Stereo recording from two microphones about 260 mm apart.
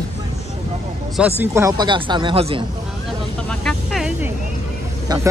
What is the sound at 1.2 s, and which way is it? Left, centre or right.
Speech, centre.